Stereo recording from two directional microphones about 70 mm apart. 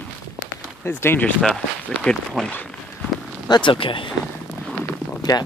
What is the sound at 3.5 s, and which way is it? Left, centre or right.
Speech, left.